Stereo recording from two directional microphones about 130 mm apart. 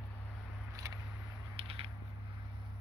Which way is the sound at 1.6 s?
45° right (ahead or behind).